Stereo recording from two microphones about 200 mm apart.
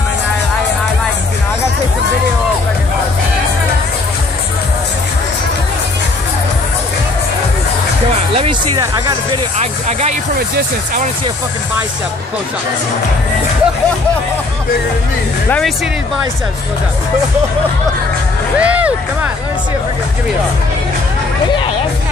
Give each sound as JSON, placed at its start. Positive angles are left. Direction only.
{"t": 8.4, "sound": "music", "side_deg": -25}
{"t": 9.6, "sound": "speech", "side_deg": -35}
{"t": 18.6, "sound": "speech", "side_deg": -5}